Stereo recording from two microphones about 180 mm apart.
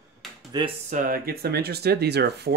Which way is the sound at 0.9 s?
50° right (ahead or behind).